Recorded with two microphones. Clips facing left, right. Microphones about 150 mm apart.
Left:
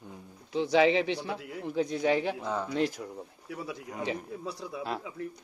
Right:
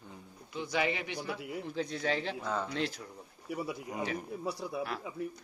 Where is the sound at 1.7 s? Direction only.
15° left (ahead or behind).